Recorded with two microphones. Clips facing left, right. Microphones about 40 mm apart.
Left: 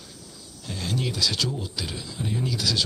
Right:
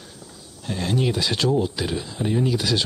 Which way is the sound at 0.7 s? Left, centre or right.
Right.